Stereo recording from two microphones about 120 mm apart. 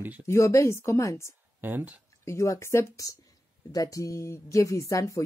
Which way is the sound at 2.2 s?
25° left (ahead or behind).